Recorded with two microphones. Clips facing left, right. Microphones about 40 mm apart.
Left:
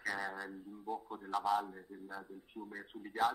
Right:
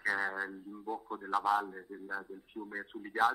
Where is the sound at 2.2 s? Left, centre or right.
Centre.